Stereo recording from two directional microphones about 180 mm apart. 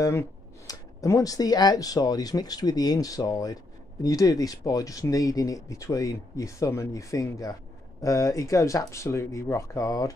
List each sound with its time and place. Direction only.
0.0 s speech: 15° left (ahead or behind)